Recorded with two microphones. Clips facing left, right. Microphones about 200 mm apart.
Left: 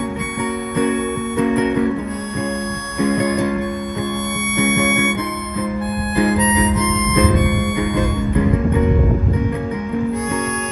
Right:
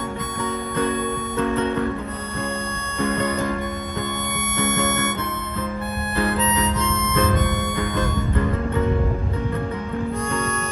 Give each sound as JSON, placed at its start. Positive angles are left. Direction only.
{"t": 0.7, "sound": "music", "side_deg": 15}
{"t": 3.0, "sound": "music", "side_deg": 15}
{"t": 4.6, "sound": "music", "side_deg": 15}
{"t": 6.1, "sound": "harmonica", "side_deg": 15}